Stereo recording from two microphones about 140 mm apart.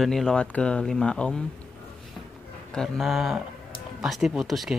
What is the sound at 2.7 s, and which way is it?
Speech, centre (ahead or behind).